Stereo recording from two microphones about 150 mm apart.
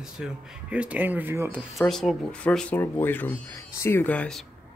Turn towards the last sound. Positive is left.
turn(degrees=5)  # may be behind; listen again after turning